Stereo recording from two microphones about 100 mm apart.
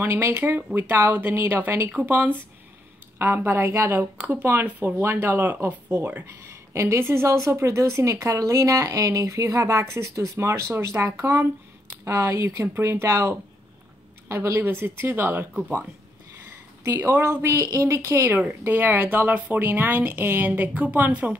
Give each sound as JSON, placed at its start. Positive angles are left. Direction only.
{"t": 0.0, "sound": "speech", "side_deg": -25}
{"t": 16.8, "sound": "speech", "side_deg": -25}